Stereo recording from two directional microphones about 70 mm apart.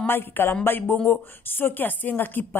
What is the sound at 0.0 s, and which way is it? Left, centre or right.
Speech, left.